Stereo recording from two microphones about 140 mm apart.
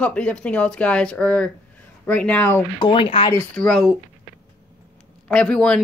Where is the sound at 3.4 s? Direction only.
5° left (ahead or behind).